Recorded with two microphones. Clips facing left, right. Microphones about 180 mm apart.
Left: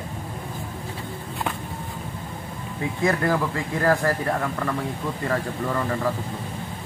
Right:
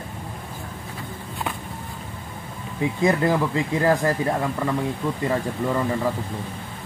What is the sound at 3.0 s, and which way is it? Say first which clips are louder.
Speech: right 2 dB; 20° right (ahead or behind).